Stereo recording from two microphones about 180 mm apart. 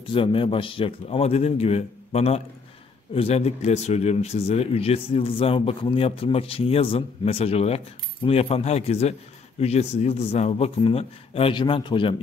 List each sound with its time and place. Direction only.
0.1 s speech: 30° left (ahead or behind)